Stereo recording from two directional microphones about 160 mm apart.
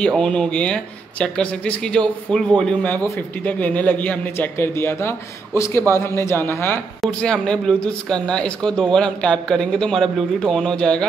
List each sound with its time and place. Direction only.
0.0 s speech: 5° left (ahead or behind)